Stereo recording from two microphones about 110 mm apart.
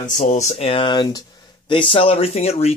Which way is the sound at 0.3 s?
90° left.